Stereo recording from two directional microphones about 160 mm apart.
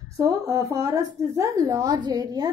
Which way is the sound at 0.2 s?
20° right (ahead or behind).